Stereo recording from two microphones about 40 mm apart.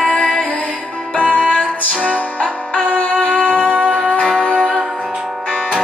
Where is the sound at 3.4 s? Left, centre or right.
Left.